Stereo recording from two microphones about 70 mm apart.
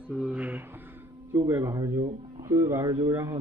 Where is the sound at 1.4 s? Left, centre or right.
Right.